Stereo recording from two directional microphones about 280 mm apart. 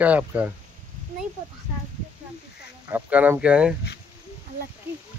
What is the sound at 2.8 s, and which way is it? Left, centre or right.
Speech, centre.